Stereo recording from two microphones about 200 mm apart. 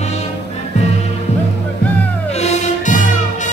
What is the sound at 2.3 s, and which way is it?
Music, 35° left (ahead or behind).